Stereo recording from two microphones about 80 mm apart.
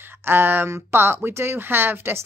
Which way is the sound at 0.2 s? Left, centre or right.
Right.